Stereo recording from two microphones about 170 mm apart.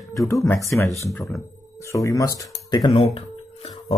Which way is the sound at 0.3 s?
15° left (ahead or behind).